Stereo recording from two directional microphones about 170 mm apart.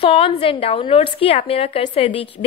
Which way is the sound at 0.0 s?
35° left (ahead or behind).